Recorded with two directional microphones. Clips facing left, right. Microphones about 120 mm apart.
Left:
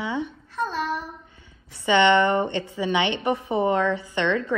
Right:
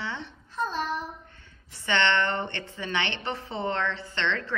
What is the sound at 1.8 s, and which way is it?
A woman's voice, 15° left (ahead or behind).